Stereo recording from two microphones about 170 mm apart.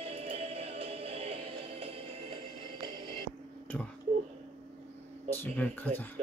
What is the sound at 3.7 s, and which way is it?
Speech, 10° left (ahead or behind).